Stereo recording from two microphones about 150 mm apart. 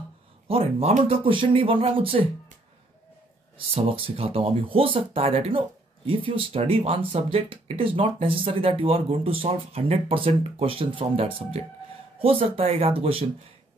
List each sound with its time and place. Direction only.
0.5 s speech: 40° right (ahead or behind)
3.5 s speech: 35° right (ahead or behind)